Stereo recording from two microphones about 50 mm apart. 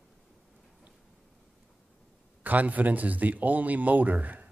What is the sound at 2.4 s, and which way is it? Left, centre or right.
Speech, right.